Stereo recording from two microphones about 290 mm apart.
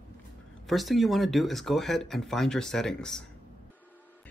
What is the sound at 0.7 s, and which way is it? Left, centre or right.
Speech, centre.